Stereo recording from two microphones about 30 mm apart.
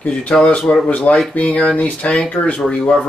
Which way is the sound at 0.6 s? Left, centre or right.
Left.